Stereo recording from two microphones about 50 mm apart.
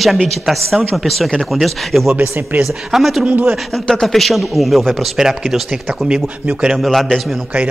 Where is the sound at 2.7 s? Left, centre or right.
Centre.